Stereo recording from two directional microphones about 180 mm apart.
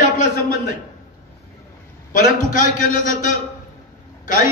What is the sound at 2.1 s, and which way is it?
A man's voice, 45° left (ahead or behind).